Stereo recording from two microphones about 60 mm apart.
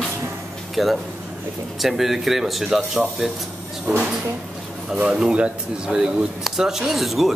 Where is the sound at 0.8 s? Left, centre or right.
Centre.